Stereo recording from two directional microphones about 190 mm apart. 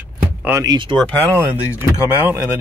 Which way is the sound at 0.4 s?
15° right (ahead or behind).